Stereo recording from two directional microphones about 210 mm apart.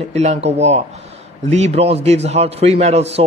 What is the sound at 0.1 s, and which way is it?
A man's voice, 30° right (ahead or behind).